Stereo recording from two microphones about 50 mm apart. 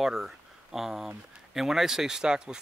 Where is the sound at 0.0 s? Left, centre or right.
Centre.